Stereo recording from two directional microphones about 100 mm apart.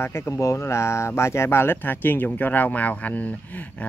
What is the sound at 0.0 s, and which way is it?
Speech, 25° left (ahead or behind).